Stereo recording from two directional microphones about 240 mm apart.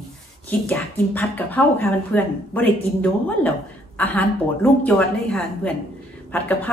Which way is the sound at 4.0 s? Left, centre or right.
Centre.